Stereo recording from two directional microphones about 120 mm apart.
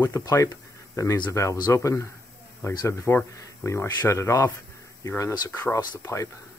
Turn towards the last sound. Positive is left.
turn(degrees=25)  # may be behind; listen again after turning